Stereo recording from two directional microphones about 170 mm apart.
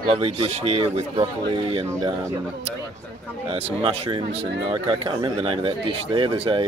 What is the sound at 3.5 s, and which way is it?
Speech, 35° right (ahead or behind).